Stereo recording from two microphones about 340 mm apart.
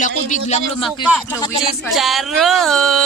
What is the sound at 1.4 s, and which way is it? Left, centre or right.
Speech, centre.